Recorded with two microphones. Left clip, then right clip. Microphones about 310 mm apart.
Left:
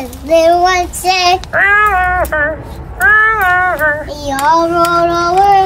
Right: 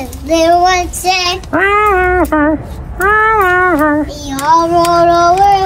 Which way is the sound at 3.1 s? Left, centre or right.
Centre.